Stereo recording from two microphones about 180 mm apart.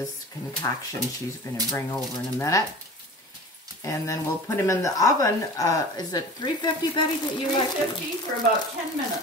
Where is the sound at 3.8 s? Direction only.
15° left (ahead or behind).